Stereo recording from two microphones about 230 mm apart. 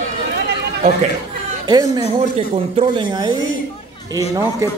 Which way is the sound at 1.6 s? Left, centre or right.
Centre.